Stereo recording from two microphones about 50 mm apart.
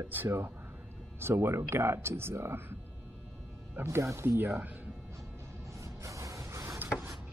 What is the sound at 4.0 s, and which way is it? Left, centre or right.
Speech, right.